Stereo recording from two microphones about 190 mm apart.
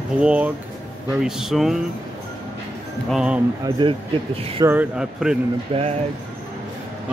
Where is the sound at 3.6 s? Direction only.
25° right (ahead or behind).